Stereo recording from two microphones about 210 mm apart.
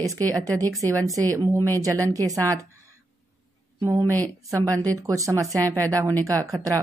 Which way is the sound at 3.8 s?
15° right (ahead or behind).